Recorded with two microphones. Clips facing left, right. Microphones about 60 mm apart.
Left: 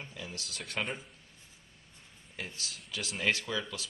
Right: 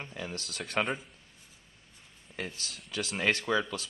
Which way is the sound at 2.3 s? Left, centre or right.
Right.